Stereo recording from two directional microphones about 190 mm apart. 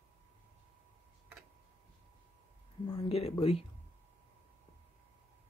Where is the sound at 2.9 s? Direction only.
30° left (ahead or behind).